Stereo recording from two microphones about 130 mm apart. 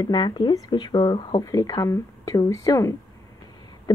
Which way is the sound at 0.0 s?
35° left (ahead or behind).